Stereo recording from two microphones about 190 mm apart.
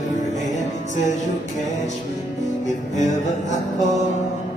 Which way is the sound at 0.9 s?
40° left (ahead or behind).